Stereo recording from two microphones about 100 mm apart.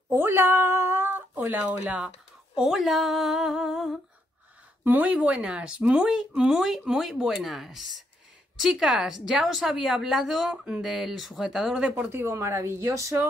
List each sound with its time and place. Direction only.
0.1 s speech: 25° right (ahead or behind)
2.5 s a woman's voice: 5° right (ahead or behind)
4.8 s a woman's voice: 15° right (ahead or behind)
11.9 s speech: 20° right (ahead or behind)